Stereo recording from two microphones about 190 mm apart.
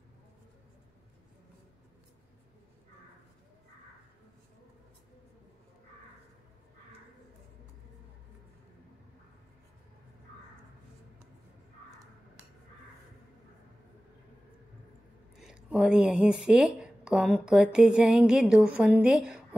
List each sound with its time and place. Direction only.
15.3 s a woman's voice: 5° right (ahead or behind)